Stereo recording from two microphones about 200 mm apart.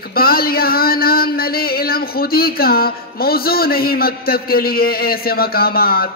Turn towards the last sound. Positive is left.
turn(degrees=50)  # may be behind; listen again after turning